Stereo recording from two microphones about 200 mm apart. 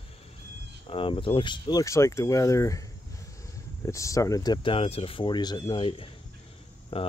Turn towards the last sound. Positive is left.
turn(degrees=30)  # may be behind; listen again after turning